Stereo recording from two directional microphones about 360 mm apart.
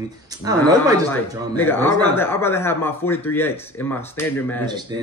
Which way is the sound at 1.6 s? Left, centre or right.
Centre.